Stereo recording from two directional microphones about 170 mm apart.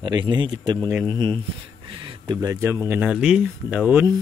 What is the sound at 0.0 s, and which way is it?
Speech, 25° right (ahead or behind).